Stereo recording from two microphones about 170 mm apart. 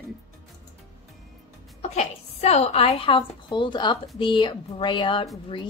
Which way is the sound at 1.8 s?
40° left (ahead or behind).